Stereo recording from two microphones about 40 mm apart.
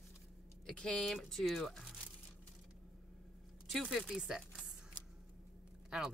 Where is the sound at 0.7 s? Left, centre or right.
Left.